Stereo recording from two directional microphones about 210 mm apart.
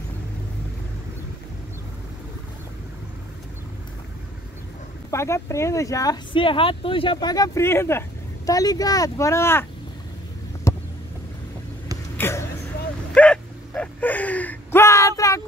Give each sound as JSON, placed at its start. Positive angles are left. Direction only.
{"t": 5.1, "sound": "speech", "side_deg": 15}
{"t": 10.7, "sound": "vehicle", "side_deg": 15}
{"t": 12.2, "sound": "a sound", "side_deg": 10}